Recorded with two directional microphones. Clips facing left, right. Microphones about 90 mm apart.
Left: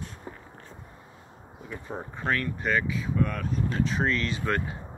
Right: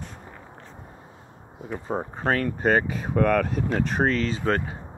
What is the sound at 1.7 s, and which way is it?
Speech, 40° right (ahead or behind).